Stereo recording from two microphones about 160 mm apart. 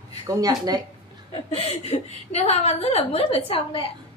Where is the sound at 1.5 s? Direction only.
40° left (ahead or behind).